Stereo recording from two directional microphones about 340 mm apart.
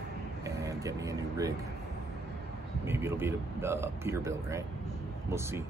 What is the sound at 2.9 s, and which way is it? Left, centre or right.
Speech, centre.